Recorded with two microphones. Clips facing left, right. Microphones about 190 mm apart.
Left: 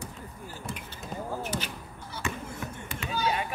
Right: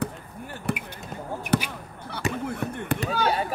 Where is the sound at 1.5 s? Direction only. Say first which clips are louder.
Right 10 dB; 65° right (ahead or behind).